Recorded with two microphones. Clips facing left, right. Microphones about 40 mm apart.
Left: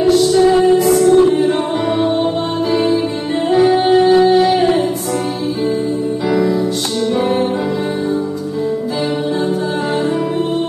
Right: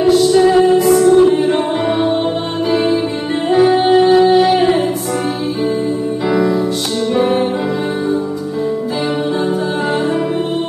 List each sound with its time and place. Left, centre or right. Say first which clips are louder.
0.0 s music: right 1 dB; centre
7.2 s music: right 3 dB; centre